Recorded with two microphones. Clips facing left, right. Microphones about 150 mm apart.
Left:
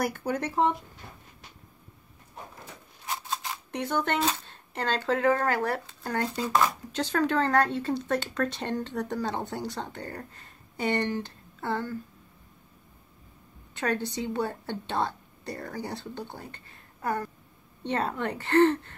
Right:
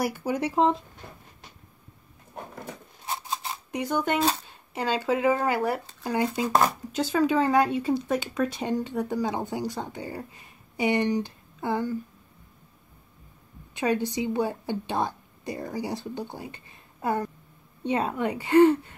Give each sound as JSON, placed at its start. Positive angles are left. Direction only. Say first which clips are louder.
{"t": 0.0, "sound": "speech", "louder": "right 2 dB", "side_deg": -5}
{"t": 3.1, "sound": "a sound", "louder": "right 1 dB", "side_deg": -25}
{"t": 3.7, "sound": "speech", "louder": "right 2 dB", "side_deg": -10}
{"t": 6.4, "sound": "speech", "louder": "right 2 dB", "side_deg": -45}
{"t": 6.9, "sound": "speech", "louder": "right 3 dB", "side_deg": -5}
{"t": 13.7, "sound": "speech", "louder": "right 4 dB", "side_deg": -15}